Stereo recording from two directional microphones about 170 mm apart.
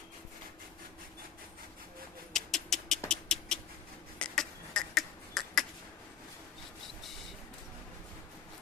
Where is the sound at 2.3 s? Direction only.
Centre (ahead or behind).